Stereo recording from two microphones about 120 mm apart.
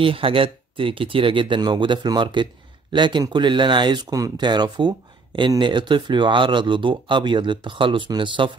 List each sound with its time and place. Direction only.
0.0 s speech: 50° right (ahead or behind)